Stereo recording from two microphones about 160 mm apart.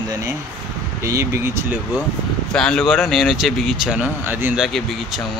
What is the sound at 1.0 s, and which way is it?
Speech, 20° right (ahead or behind).